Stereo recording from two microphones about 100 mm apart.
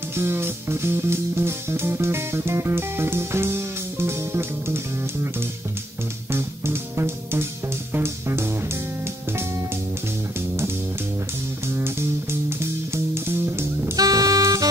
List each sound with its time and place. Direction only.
0.1 s music: 25° right (ahead or behind)
6.3 s music: 25° right (ahead or behind)
11.7 s music: 25° right (ahead or behind)
13.9 s music: 40° right (ahead or behind)